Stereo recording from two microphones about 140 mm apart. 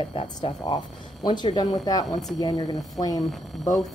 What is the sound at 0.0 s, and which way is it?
Speech, 30° left (ahead or behind).